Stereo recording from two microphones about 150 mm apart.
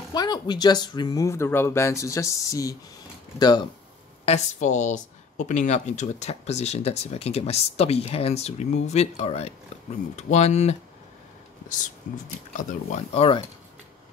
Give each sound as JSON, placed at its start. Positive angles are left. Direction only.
{"t": 0.1, "sound": "speech", "side_deg": 25}
{"t": 4.3, "sound": "a woman's voice", "side_deg": 55}
{"t": 12.5, "sound": "a woman's voice", "side_deg": 45}